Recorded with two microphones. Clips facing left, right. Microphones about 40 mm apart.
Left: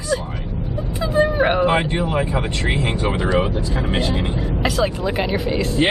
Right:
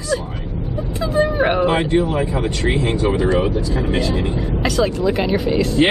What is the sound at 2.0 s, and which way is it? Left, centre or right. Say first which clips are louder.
Speech: right 1 dB; left.